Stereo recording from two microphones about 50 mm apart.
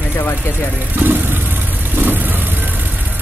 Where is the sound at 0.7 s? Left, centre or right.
Right.